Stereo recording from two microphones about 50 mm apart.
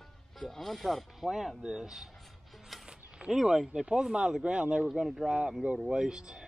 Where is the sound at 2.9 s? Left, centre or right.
Centre.